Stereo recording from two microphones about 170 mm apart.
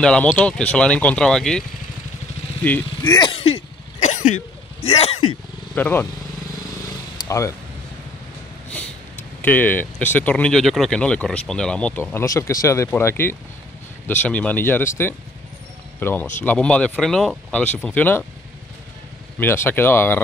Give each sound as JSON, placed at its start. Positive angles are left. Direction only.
{"t": 0.0, "sound": "speech", "side_deg": 5}
{"t": 3.0, "sound": "throat clearing", "side_deg": 25}
{"t": 4.8, "sound": "speech", "side_deg": 35}
{"t": 5.8, "sound": "speech", "side_deg": 10}
{"t": 7.2, "sound": "speech", "side_deg": 15}
{"t": 9.4, "sound": "speech", "side_deg": 10}
{"t": 19.4, "sound": "speech", "side_deg": 15}